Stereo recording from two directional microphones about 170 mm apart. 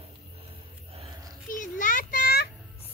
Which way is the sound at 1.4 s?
50° left (ahead or behind).